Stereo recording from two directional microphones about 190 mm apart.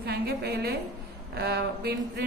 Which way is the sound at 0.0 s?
55° right (ahead or behind).